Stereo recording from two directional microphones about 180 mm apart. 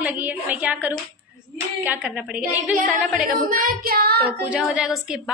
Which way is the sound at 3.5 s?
50° right (ahead or behind).